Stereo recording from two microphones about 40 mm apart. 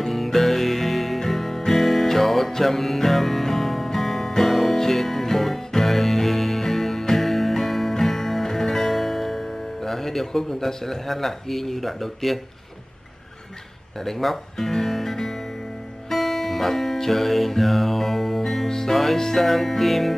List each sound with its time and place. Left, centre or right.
0.0 s music: centre
14.0 s speech: centre
16.1 s music: centre